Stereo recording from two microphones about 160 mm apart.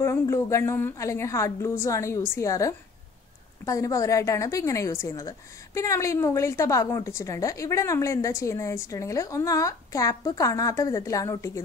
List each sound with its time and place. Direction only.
0.0 s a woman's voice: 15° left (ahead or behind)